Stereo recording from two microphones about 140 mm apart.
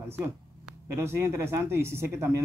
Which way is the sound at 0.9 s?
20° right (ahead or behind).